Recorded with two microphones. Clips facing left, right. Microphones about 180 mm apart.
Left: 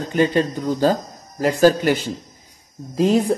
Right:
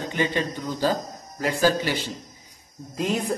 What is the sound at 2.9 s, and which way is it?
Speech, 35° left (ahead or behind).